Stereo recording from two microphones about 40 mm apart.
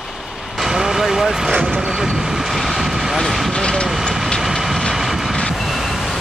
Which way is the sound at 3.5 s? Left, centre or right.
Centre.